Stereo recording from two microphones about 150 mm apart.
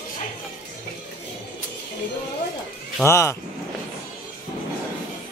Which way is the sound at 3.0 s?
20° left (ahead or behind).